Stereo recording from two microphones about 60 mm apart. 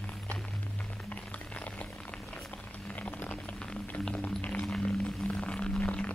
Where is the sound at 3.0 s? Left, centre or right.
Left.